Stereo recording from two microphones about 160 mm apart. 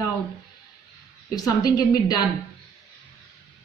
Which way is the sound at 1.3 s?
20° left (ahead or behind).